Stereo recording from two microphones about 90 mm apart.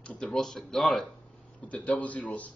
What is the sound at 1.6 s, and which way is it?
Speech, 15° left (ahead or behind).